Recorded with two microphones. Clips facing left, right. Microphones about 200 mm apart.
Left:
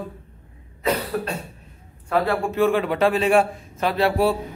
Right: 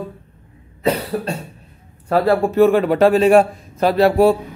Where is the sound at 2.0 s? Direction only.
40° right (ahead or behind).